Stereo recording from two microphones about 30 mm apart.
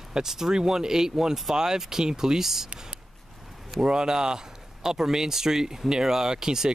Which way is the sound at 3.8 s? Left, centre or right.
Right.